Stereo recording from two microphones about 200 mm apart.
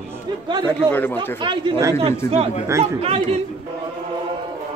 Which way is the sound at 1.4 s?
20° right (ahead or behind).